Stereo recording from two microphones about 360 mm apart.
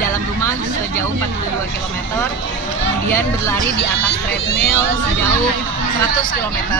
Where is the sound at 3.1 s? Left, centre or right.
Centre.